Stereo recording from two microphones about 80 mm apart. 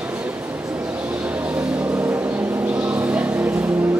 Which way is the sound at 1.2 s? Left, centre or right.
Centre.